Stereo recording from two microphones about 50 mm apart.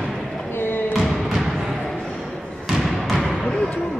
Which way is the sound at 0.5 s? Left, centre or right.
Left.